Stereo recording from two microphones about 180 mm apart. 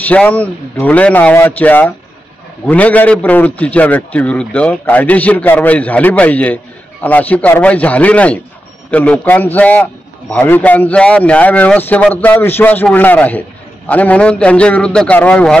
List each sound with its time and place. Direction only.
0.1 s a man's voice: 10° left (ahead or behind)